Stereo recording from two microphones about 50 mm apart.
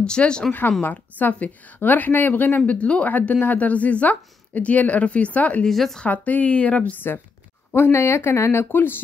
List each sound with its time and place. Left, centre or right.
0.0 s speech: centre
0.5 s a woman's voice: left
5.7 s speech: centre
6.0 s a woman's voice: left
7.7 s speech: left